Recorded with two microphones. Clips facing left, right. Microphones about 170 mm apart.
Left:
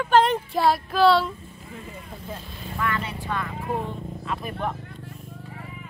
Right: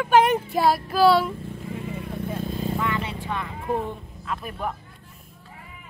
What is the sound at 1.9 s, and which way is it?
Vehicle, 60° right (ahead or behind).